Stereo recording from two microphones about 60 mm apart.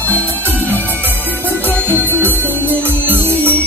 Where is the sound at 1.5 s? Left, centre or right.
Right.